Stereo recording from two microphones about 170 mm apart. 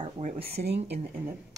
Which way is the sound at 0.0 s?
40° right (ahead or behind).